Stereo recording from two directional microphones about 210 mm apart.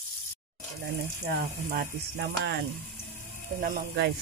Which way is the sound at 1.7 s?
50° right (ahead or behind).